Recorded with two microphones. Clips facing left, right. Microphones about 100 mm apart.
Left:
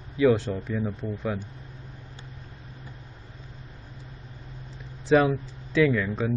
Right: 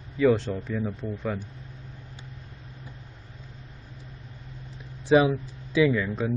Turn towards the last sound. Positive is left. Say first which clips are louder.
# even
turn(degrees=-5)  # may be behind; listen again after turning